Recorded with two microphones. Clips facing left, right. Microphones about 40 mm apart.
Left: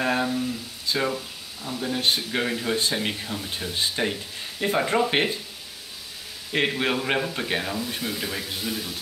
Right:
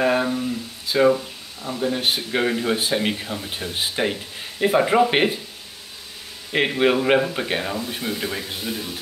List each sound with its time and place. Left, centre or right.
0.0 s a sound: centre
1.8 s speech: centre
6.5 s speech: centre